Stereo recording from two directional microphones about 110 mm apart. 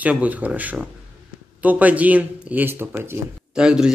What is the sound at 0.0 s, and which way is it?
Speech, 15° right (ahead or behind).